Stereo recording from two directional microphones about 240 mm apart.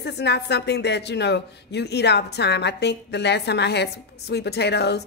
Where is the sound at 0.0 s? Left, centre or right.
Left.